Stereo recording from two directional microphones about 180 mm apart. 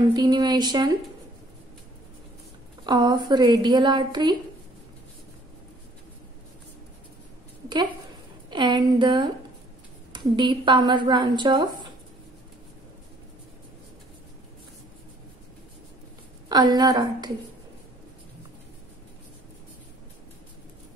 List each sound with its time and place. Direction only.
0.1 s a woman's voice: 20° right (ahead or behind)
2.8 s a woman's voice: 25° right (ahead or behind)
8.5 s a woman's voice: 25° right (ahead or behind)
16.4 s a woman's voice: 20° right (ahead or behind)